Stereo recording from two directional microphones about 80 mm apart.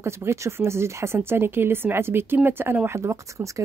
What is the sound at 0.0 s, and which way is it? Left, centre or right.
Speech, right.